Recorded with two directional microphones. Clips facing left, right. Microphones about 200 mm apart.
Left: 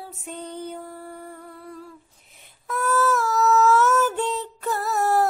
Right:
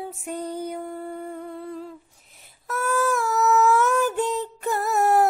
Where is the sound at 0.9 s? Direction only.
20° right (ahead or behind).